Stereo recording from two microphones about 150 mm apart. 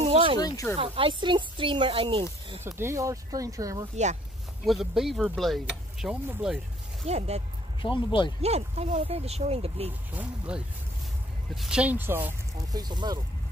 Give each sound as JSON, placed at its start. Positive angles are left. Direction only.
{"t": 0.1, "sound": "a sound", "side_deg": -35}
{"t": 0.4, "sound": "speech", "side_deg": 25}
{"t": 0.7, "sound": "speech", "side_deg": -35}
{"t": 2.6, "sound": "speech", "side_deg": -20}
{"t": 3.9, "sound": "speech", "side_deg": -50}
{"t": 4.6, "sound": "speech", "side_deg": 0}
{"t": 7.1, "sound": "speech", "side_deg": -45}
{"t": 7.8, "sound": "speech", "side_deg": 35}
{"t": 8.4, "sound": "speech", "side_deg": -45}
{"t": 10.1, "sound": "speech", "side_deg": -5}
{"t": 12.7, "sound": "speech", "side_deg": -30}